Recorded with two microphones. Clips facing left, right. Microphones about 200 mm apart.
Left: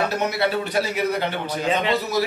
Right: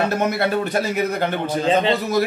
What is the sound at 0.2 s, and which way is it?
Speech, 50° right (ahead or behind).